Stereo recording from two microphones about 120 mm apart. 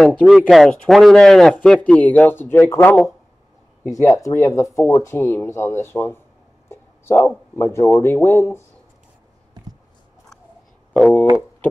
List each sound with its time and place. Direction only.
0.0 s speech: 5° left (ahead or behind)
6.7 s a sound: 20° left (ahead or behind)
7.5 s speech: 20° left (ahead or behind)
10.9 s speech: 10° left (ahead or behind)